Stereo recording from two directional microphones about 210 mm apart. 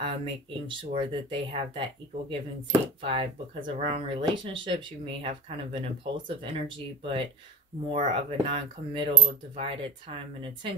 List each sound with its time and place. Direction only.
0.0 s coin: 25° right (ahead or behind)